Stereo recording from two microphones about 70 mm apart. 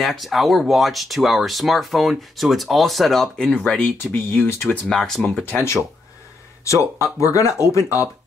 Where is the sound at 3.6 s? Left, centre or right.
Centre.